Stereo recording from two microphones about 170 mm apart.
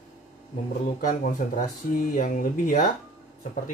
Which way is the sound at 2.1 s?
55° left (ahead or behind).